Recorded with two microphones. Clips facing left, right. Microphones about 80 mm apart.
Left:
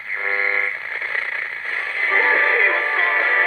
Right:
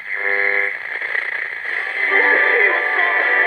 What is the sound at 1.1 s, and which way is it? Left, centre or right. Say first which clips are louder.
Radio: right 2 dB; right.